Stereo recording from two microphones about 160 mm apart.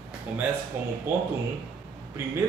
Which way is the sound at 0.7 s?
15° right (ahead or behind).